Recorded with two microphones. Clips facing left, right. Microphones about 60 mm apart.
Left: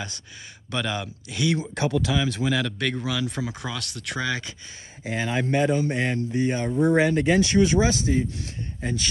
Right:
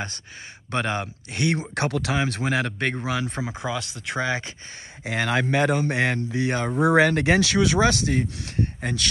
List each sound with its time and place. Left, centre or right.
0.7 s speech: right
3.4 s speech: right
5.0 s speech: right